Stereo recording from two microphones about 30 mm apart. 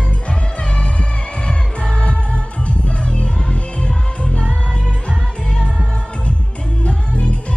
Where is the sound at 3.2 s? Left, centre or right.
Left.